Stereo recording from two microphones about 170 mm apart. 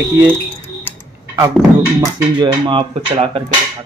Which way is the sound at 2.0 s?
25° right (ahead or behind).